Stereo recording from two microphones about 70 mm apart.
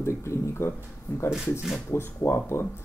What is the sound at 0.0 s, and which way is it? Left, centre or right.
Speech, left.